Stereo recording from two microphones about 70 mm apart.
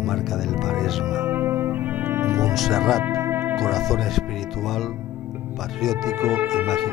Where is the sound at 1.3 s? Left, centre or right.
Right.